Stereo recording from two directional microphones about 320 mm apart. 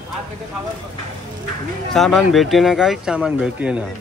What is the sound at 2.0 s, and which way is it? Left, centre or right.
Speech, centre.